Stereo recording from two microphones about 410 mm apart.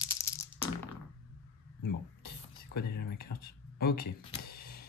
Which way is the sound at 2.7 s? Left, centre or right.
Left.